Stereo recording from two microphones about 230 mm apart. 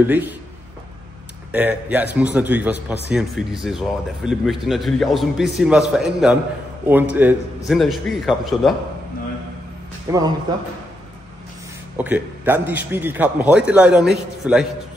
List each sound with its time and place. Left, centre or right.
0.0 s a man's voice: centre
1.5 s a man's voice: centre
10.1 s a man's voice: centre
12.0 s a man's voice: centre